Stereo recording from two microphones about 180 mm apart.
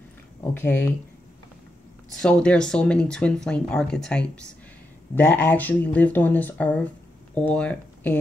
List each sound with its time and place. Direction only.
0.4 s speech: 10° left (ahead or behind)
2.1 s speech: 5° left (ahead or behind)